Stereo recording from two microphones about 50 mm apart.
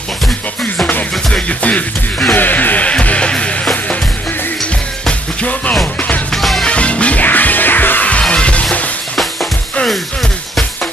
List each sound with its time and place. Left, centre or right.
1.3 s music: left
5.0 s music: left
6.3 s music: centre
6.6 s music: left